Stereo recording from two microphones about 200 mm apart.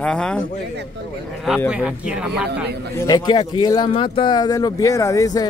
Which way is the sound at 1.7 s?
5° right (ahead or behind).